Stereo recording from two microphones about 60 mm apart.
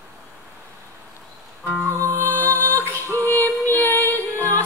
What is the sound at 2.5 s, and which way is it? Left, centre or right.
Music, left.